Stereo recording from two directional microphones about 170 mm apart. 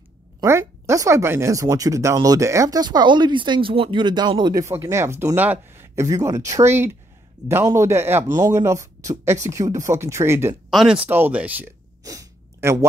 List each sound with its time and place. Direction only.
0.4 s speech: 15° right (ahead or behind)
10.7 s speech: 5° right (ahead or behind)
12.0 s a sound: 20° right (ahead or behind)